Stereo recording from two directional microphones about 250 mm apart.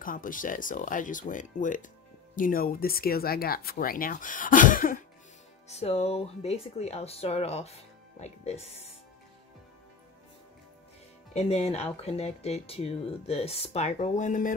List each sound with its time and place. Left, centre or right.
0.0 s speech: left
11.3 s speech: left